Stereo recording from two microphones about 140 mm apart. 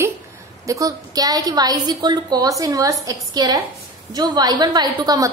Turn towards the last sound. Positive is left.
turn(degrees=-30)  # may be behind; listen again after turning